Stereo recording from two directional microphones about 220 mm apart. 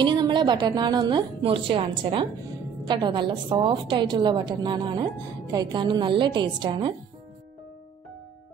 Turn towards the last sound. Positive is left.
turn(degrees=-20)  # may be behind; listen again after turning